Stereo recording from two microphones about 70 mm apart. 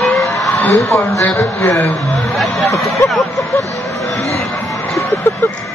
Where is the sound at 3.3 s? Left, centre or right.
Left.